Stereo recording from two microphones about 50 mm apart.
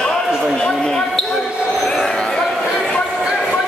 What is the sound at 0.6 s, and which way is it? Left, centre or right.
Basketball bounce, centre.